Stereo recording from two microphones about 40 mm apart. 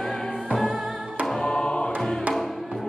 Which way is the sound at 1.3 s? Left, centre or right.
Centre.